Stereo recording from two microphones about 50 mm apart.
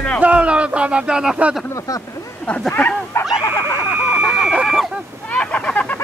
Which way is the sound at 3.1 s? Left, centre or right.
Left.